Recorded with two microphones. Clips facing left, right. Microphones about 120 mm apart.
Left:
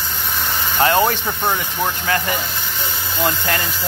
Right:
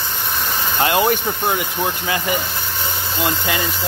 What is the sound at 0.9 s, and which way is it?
Speech, 15° right (ahead or behind).